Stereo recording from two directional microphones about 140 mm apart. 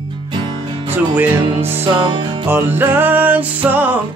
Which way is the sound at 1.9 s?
35° right (ahead or behind).